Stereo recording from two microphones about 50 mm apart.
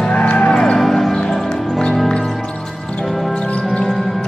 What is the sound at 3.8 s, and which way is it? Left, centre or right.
Music, centre.